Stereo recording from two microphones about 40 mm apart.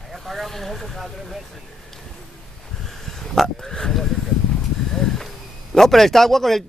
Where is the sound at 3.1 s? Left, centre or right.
Centre.